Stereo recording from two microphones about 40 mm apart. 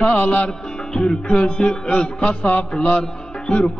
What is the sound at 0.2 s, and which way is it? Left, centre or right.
Music, left.